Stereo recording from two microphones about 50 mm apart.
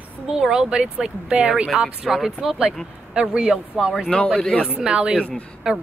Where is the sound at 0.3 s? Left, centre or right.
Centre.